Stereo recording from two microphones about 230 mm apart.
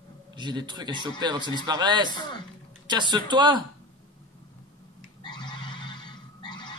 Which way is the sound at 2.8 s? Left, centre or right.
Centre.